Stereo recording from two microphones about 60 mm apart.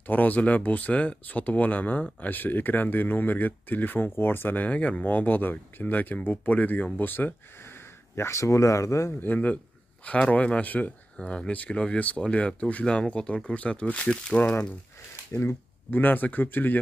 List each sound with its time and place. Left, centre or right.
0.0 s speech: left
8.2 s speech: left
9.2 s speech: left
15.3 s speech: left